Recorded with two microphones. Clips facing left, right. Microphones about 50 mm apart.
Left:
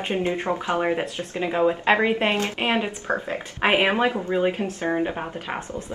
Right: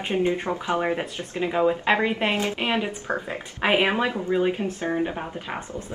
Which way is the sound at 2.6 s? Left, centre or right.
Left.